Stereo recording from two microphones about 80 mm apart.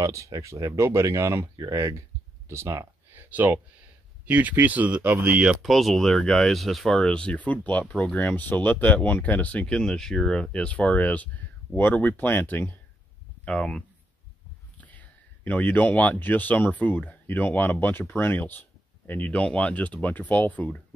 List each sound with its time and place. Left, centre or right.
0.0 s speech: right
1.6 s a sound: right
4.3 s speech: centre
5.6 s speech: centre; by 12.7 s left
13.5 s speech: centre